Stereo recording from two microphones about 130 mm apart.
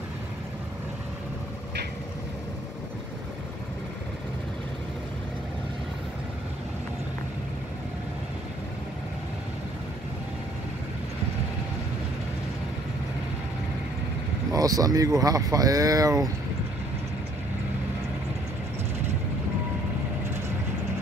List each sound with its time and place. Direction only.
14.5 s speech: 30° right (ahead or behind)